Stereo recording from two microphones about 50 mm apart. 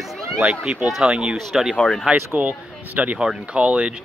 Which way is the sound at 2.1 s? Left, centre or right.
Right.